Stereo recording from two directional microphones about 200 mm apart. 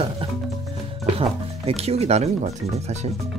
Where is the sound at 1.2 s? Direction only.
30° right (ahead or behind).